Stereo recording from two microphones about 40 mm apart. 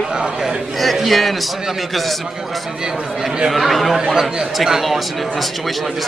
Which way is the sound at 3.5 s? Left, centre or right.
Centre.